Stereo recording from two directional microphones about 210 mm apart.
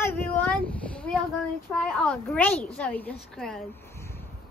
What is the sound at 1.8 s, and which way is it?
A woman's voice, 5° left (ahead or behind).